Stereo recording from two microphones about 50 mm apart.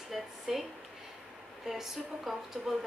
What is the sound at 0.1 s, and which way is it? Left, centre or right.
Speech, centre.